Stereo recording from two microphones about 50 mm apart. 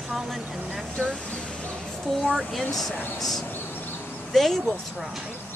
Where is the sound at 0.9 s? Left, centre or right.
Left.